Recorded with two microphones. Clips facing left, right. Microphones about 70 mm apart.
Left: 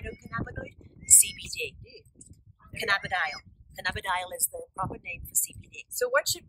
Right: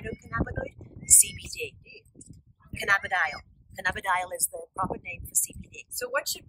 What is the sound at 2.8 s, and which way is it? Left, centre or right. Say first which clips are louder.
Speech: right 3 dB; centre.